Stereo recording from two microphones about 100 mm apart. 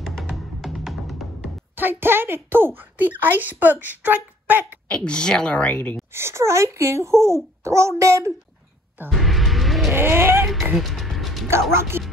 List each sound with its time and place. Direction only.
0.0 s music: centre (ahead or behind)
1.8 s a child's voice: 20° right (ahead or behind)
3.8 s a sound: 15° right (ahead or behind)
4.8 s a woman's voice: 10° left (ahead or behind)
6.1 s a child's voice: 25° right (ahead or behind)
9.2 s music: centre (ahead or behind)
9.9 s a sound: 25° right (ahead or behind)
10.4 s a sound: centre (ahead or behind)
10.7 s music: centre (ahead or behind)
11.9 s a child's voice: 25° right (ahead or behind)